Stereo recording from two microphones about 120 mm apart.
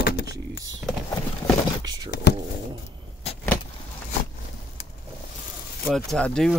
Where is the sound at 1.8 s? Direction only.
35° right (ahead or behind).